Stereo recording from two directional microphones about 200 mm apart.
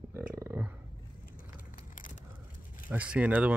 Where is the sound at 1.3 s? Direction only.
45° left (ahead or behind).